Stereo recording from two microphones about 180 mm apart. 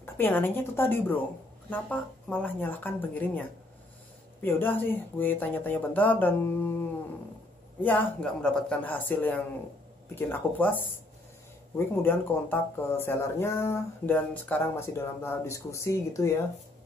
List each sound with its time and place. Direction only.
0.0 s speech: 10° left (ahead or behind)
7.8 s speech: 10° left (ahead or behind)
11.9 s speech: 10° left (ahead or behind)